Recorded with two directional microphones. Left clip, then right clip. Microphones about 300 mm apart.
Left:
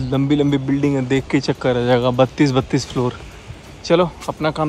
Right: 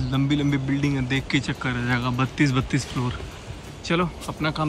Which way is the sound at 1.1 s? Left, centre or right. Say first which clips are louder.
Left 6 dB; centre.